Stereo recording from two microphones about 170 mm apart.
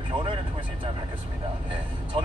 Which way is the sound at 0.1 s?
30° right (ahead or behind).